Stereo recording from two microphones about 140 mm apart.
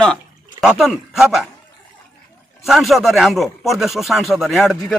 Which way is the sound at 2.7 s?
Centre (ahead or behind).